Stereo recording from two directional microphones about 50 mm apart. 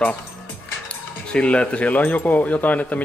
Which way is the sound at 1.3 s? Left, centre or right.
Left.